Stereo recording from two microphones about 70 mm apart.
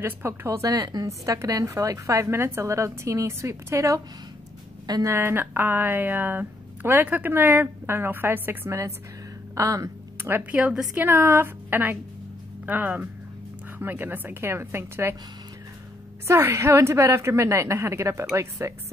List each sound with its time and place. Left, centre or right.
0.0 s a woman's voice: right
2.2 s a woman's voice: right
5.0 s speech: right
9.6 s a woman's voice: right
11.1 s speech: right
16.3 s a woman's voice: right